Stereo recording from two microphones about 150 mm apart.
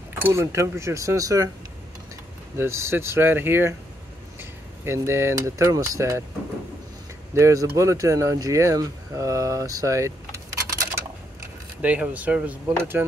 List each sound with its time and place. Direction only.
0.1 s speech: 15° right (ahead or behind)
2.5 s speech: 15° right (ahead or behind)
7.3 s speech: 20° right (ahead or behind)
11.8 s speech: 10° right (ahead or behind)